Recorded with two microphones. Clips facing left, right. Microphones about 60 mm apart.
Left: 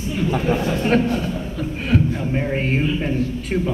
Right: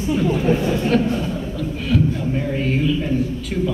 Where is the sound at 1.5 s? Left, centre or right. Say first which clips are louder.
Even; left.